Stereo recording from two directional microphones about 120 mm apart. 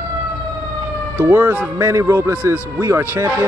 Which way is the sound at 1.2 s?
15° right (ahead or behind).